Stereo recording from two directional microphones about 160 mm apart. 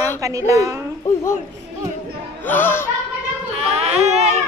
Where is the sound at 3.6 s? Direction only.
40° right (ahead or behind).